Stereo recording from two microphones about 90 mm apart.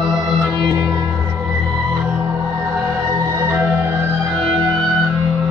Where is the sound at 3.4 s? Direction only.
25° right (ahead or behind).